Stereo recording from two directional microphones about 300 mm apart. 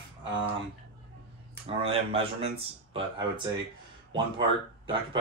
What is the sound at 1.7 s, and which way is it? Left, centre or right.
Speech, centre.